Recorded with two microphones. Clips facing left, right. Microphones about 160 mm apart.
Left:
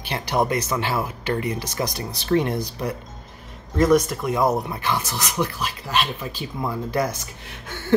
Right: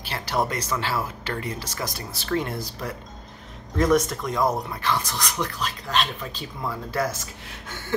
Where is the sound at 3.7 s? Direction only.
Centre (ahead or behind).